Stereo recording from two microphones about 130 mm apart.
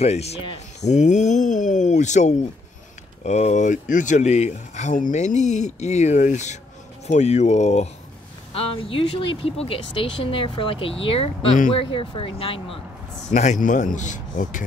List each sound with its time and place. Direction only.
0.0 s speech: 55° left (ahead or behind)
0.7 s a sound: 60° left (ahead or behind)
3.3 s speech: 65° left (ahead or behind)
8.5 s speech: 45° left (ahead or behind)
13.3 s a man's voice: 65° left (ahead or behind); by 14.6 s 85° left